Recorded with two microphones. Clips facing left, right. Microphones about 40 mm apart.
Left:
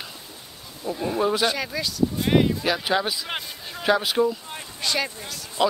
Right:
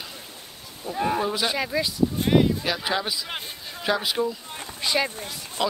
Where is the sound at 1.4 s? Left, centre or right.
Centre.